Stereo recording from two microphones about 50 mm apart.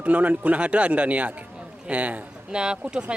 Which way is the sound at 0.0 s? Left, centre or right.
Right.